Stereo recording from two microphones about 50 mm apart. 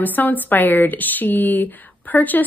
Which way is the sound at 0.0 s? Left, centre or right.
Left.